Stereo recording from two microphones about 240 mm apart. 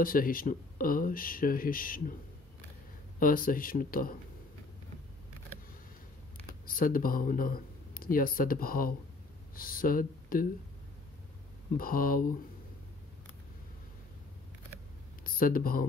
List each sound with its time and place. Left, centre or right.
0.0 s speech: left
3.2 s speech: left
6.4 s speech: left
11.7 s speech: left
15.2 s speech: left